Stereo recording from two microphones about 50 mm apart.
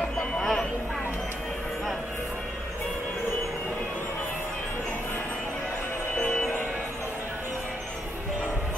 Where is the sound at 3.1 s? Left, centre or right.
Left.